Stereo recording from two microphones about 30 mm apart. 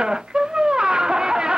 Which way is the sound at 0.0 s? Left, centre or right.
Right.